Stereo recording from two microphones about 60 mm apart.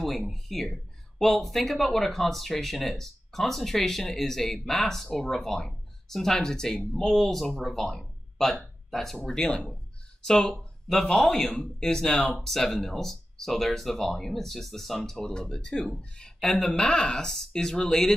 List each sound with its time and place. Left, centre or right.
0.0 s speech: centre